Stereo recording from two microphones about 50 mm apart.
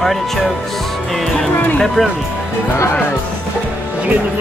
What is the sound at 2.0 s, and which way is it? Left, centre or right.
Speech, centre.